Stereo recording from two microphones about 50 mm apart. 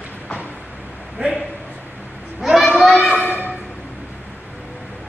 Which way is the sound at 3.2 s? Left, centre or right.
Left.